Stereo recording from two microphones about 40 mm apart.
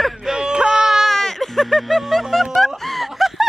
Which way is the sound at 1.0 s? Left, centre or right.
Centre.